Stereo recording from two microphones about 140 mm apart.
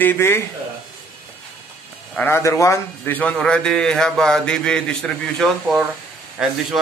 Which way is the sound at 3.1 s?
10° left (ahead or behind).